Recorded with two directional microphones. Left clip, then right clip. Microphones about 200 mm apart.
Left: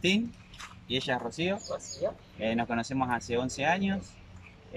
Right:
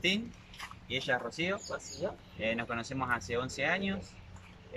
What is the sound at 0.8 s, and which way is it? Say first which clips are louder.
Speech: left 2 dB; 20° left (ahead or behind).